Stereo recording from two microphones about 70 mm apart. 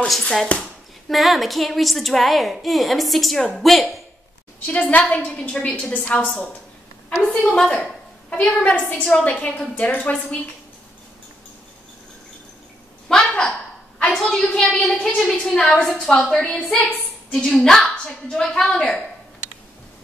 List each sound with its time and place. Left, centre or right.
0.2 s a woman's voice: centre
4.6 s a woman's voice: centre
7.1 s a woman's voice: centre; by 10.1 s left
13.1 s a sound: centre
14.1 s a woman's voice: centre